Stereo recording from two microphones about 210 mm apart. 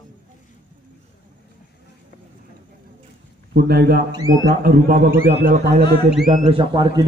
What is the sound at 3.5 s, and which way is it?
A man's voice, 50° right (ahead or behind).